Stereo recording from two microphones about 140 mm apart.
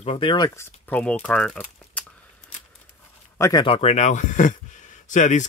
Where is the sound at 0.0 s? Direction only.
40° left (ahead or behind).